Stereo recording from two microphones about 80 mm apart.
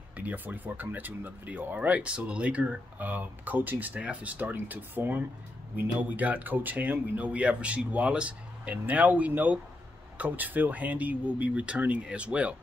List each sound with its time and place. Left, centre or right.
0.2 s speech: right